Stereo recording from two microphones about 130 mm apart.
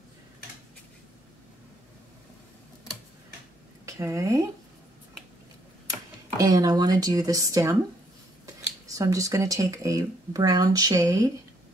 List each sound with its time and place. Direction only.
3.8 s speech: 25° right (ahead or behind)
5.9 s speech: 30° right (ahead or behind)
8.9 s speech: 25° right (ahead or behind)